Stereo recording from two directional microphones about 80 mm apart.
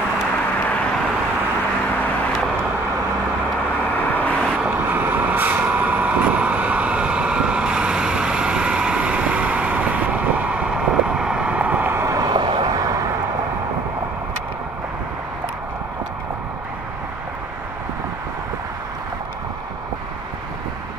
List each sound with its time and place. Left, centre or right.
4.1 s vehicle: centre
4.9 s vehicle: right
11.1 s vehicle: centre
11.9 s vehicle: right
12.2 s vehicle: right